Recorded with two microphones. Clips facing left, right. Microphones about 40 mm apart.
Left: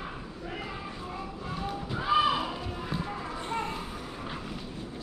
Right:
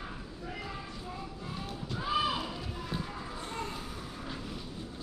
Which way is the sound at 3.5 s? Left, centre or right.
Left.